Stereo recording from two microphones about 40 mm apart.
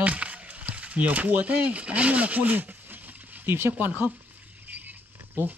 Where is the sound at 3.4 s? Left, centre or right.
Right.